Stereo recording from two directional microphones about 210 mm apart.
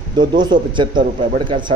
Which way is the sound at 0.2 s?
20° right (ahead or behind).